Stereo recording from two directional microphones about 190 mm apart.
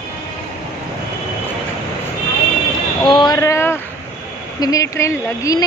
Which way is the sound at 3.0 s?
25° left (ahead or behind).